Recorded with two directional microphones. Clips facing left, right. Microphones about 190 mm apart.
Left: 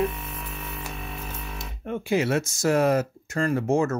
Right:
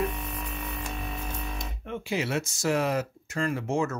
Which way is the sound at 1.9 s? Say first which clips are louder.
Left 6 dB; 50° left (ahead or behind).